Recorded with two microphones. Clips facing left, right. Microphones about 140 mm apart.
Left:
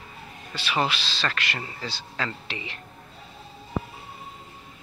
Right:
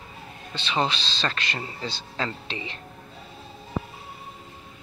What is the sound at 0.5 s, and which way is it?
Speech, 25° right (ahead or behind).